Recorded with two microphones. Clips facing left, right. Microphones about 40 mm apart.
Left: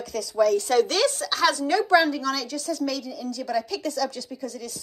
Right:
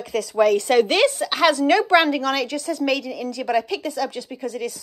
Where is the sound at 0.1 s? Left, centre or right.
Right.